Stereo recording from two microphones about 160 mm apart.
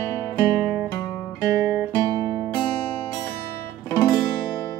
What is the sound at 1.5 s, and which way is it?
Guitar, 20° right (ahead or behind).